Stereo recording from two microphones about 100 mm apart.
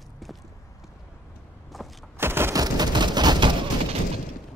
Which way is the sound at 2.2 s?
25° right (ahead or behind).